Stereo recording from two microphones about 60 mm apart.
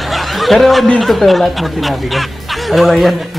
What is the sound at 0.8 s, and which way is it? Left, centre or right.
Speech, centre.